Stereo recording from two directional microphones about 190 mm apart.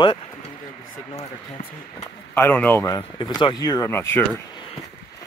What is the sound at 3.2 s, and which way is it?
Speech, 25° left (ahead or behind).